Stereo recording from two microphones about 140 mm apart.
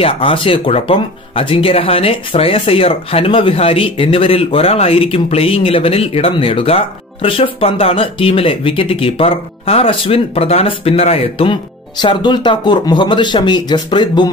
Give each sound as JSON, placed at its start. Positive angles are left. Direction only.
{"t": 0.0, "sound": "speech", "side_deg": 40}